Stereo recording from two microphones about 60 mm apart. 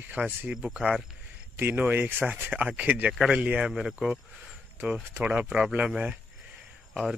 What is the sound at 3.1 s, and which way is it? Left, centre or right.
Speech, centre.